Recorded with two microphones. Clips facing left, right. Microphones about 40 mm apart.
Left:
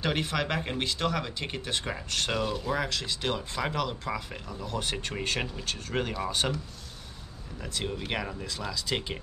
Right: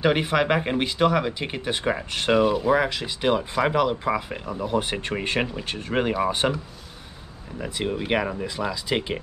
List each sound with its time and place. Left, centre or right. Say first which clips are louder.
0.0 s speech: right 8 dB; right